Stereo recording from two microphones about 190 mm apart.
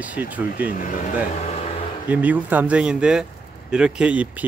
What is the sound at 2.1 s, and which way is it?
Speech, 10° right (ahead or behind).